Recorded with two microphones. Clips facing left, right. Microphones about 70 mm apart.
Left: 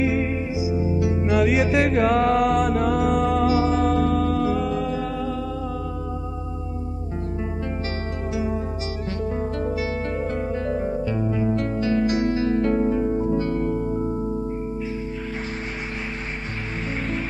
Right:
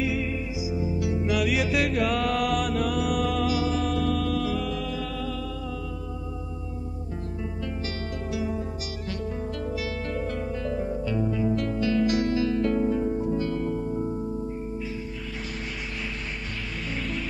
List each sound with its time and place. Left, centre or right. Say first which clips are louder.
0.0 s music: left 5 dB; left
8.3 s music: left 4 dB; left